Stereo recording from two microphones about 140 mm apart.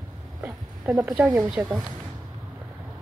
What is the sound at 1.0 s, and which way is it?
Speech, 10° right (ahead or behind).